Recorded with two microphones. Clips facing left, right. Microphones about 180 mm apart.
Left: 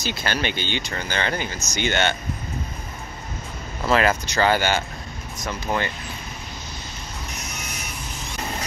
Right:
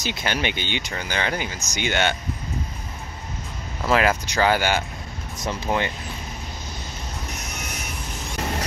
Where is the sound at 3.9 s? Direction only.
10° right (ahead or behind).